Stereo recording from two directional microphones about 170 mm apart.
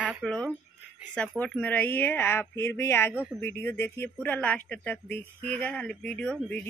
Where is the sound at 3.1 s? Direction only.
5° right (ahead or behind).